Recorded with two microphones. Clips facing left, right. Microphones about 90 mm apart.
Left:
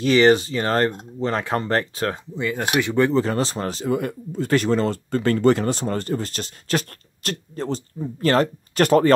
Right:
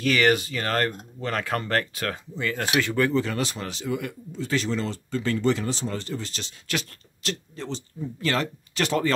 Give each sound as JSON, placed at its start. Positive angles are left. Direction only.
{"t": 0.0, "sound": "speech", "side_deg": 25}
{"t": 3.2, "sound": "speech", "side_deg": 35}